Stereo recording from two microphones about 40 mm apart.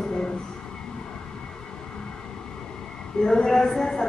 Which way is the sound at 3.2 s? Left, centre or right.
Centre.